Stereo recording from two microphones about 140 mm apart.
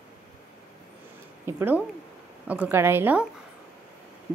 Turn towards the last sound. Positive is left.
turn(degrees=-15)  # may be behind; listen again after turning